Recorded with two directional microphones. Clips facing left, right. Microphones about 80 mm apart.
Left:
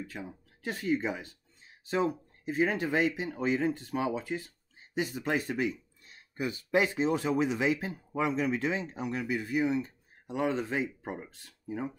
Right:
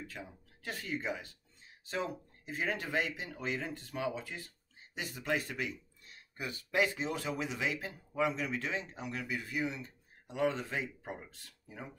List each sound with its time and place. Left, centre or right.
0.1 s speech: left